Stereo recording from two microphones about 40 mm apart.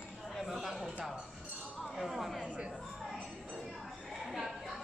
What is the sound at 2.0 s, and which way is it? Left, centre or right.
Chatter, centre.